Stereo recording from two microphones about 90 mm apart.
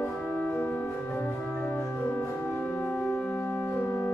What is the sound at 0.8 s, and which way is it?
Music, 30° left (ahead or behind).